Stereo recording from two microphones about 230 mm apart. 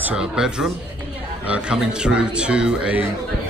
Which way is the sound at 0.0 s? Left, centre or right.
Centre.